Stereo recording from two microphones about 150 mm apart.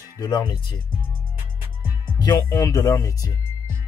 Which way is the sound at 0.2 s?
30° left (ahead or behind).